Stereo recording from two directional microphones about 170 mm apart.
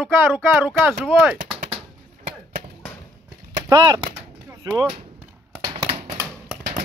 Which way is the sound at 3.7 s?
25° right (ahead or behind).